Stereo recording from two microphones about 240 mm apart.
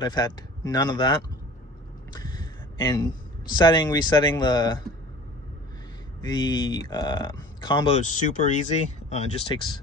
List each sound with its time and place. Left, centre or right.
0.0 s speech: centre
2.1 s a sound: centre
3.5 s speech: centre
6.2 s speech: centre